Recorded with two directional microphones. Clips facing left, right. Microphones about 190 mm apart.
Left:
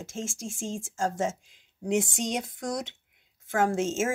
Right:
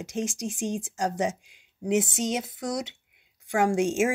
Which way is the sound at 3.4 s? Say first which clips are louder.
Right 2 dB; 15° right (ahead or behind).